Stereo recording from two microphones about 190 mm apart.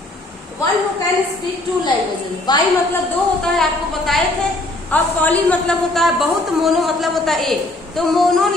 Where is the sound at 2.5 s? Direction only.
20° left (ahead or behind).